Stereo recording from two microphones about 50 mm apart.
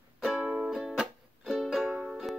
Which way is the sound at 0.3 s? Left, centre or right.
Centre.